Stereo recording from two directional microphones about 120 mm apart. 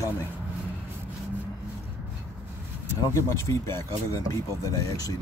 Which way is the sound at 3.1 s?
25° left (ahead or behind).